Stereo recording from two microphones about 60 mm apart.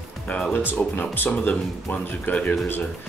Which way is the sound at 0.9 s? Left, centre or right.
Left.